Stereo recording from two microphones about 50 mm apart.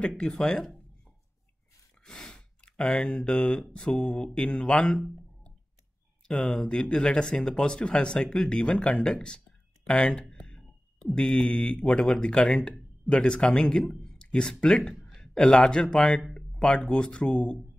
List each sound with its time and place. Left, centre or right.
0.2 s speech: centre
2.0 s sigh: centre
3.0 s speech: centre
3.3 s speech: left
6.2 s speech: centre
13.1 s speech: centre
15.0 s a sound: centre
15.4 s speech: centre
16.9 s speech: centre